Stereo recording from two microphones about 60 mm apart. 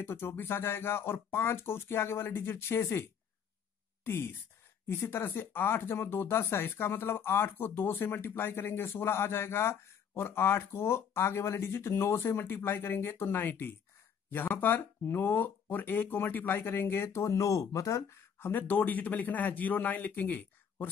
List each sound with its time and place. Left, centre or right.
0.0 s speech: left
17.1 s speech: left
18.1 s speech: left